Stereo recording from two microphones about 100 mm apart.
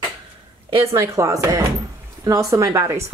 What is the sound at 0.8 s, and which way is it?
Speech, 30° right (ahead or behind).